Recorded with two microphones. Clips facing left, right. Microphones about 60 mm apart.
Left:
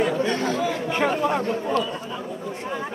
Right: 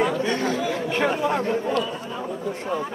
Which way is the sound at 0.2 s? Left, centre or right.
Centre.